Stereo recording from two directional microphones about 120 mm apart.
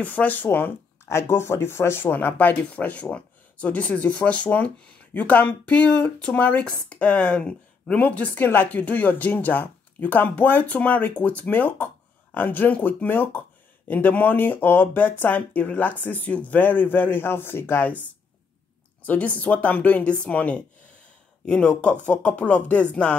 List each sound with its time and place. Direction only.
0.0 s speech: 15° left (ahead or behind)
19.0 s speech: 10° left (ahead or behind)